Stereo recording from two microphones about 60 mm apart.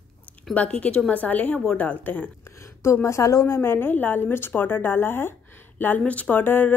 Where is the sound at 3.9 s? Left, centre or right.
Left.